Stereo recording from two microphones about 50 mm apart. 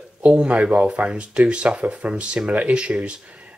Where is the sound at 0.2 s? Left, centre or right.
Right.